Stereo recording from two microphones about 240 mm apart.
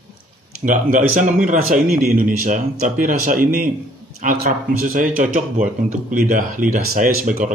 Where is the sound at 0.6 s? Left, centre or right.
Right.